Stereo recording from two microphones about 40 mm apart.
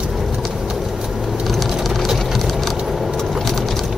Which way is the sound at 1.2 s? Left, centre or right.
Centre.